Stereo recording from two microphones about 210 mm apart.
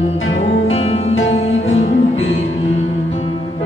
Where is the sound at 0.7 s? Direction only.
30° left (ahead or behind).